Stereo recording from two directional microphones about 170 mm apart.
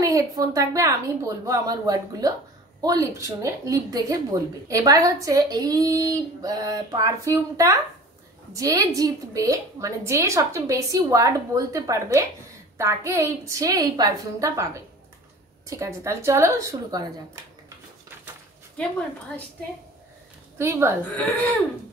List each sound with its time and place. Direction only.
0.0 s a woman's voice: 20° right (ahead or behind)
18.8 s a woman's voice: 5° left (ahead or behind)
20.5 s a woman's voice: 15° right (ahead or behind)
21.2 s speech: 10° left (ahead or behind)